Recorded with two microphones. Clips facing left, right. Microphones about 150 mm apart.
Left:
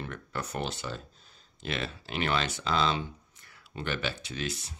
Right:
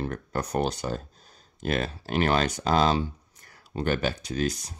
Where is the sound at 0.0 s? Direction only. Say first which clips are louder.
Right 7 dB; 40° right (ahead or behind).